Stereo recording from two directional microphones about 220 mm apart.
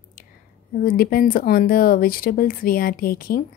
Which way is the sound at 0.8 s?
40° left (ahead or behind).